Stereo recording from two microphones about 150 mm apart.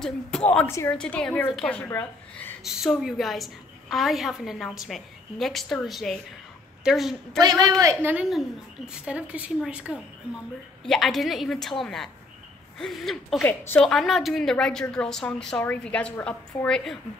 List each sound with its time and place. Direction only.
0.5 s a woman's voice: 15° left (ahead or behind)
0.9 s a woman's voice: 5° left (ahead or behind)
2.6 s a woman's voice: centre (ahead or behind)
7.4 s a man's voice: 25° right (ahead or behind); by 13.4 s centre (ahead or behind)
13.4 s a woman's voice: 15° left (ahead or behind)